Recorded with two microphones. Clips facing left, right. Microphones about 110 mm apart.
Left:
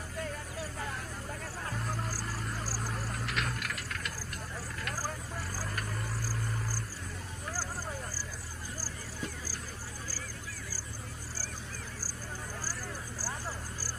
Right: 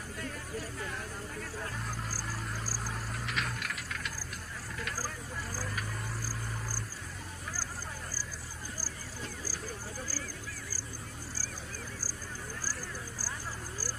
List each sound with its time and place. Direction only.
1.9 s vehicle: 5° right (ahead or behind)
5.8 s cricket: 5° right (ahead or behind)